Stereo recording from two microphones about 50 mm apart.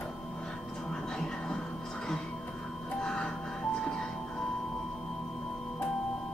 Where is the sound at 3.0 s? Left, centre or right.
Centre.